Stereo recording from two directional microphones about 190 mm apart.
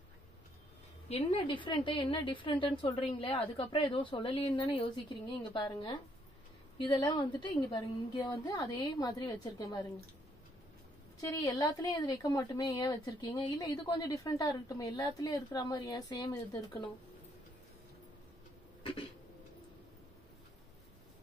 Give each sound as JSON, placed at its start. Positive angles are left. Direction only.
{"t": 1.0, "sound": "a woman's voice", "side_deg": 30}
{"t": 11.1, "sound": "a woman's voice", "side_deg": 20}
{"t": 18.8, "sound": "a sound", "side_deg": 30}